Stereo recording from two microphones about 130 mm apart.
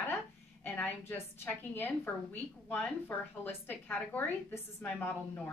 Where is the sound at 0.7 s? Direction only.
15° left (ahead or behind).